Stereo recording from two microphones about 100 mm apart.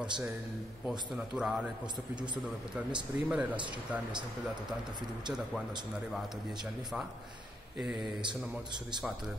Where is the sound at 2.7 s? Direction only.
10° right (ahead or behind).